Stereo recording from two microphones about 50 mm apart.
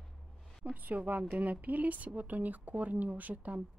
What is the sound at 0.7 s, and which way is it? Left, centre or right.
Speech, right.